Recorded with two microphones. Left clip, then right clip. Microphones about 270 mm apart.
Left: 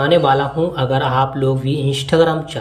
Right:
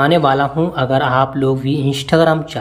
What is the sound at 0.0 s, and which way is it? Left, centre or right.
Speech, centre.